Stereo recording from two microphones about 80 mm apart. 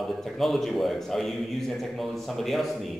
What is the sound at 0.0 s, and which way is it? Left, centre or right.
A man's voice, centre.